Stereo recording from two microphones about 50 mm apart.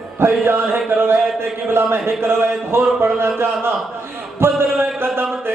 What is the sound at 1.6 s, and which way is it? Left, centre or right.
Speech, right.